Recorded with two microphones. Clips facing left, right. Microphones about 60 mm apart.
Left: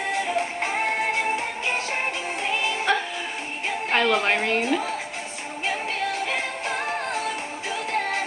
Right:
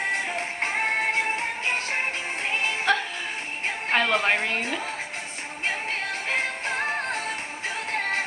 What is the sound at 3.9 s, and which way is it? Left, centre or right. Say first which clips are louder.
Music: left 1 dB; centre.